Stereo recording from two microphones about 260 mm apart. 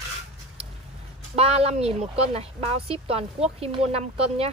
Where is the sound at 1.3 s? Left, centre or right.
Right.